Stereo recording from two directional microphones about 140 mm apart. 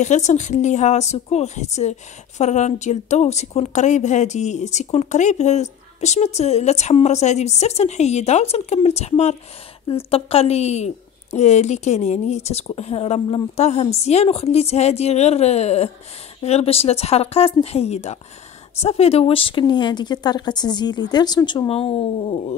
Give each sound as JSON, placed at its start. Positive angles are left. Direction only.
{"t": 0.0, "sound": "speech", "side_deg": 60}
{"t": 21.6, "sound": "speech", "side_deg": 45}